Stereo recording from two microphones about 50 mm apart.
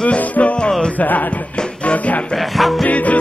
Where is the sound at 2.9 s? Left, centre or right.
Left.